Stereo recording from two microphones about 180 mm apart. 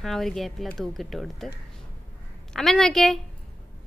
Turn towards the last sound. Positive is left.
turn(degrees=5)  # may be behind; listen again after turning